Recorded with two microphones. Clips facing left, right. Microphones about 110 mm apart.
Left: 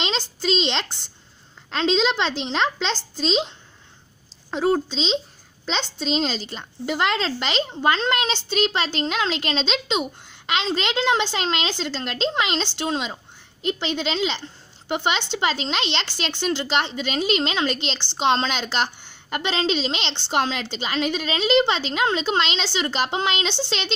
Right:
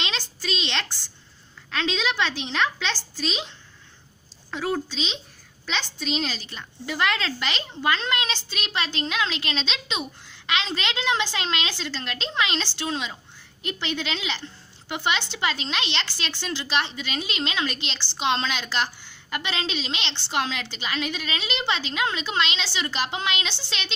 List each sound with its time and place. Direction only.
0.1 s a sound: 30° left (ahead or behind)
1.7 s a woman's voice: 30° left (ahead or behind)
4.5 s a woman's voice: 25° left (ahead or behind)